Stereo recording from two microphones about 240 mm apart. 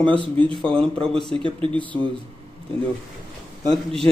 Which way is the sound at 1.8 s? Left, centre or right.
Centre.